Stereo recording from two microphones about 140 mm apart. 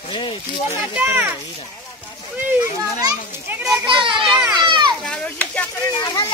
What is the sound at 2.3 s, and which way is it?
Speech, 15° right (ahead or behind).